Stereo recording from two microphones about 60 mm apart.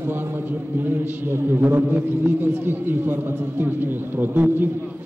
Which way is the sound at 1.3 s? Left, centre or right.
Right.